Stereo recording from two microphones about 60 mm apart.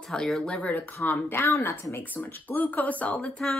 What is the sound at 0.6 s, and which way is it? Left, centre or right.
Speech, left.